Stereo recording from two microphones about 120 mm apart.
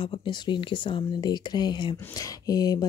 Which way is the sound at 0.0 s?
40° left (ahead or behind).